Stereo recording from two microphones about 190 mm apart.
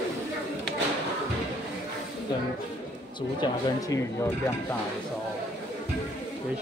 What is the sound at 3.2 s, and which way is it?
Speech, 20° left (ahead or behind).